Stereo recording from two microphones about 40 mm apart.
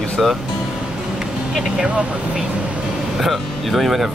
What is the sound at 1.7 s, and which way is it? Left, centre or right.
Speech, right.